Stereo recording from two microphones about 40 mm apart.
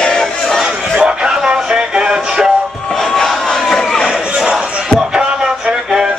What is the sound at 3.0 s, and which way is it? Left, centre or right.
Crowd, centre.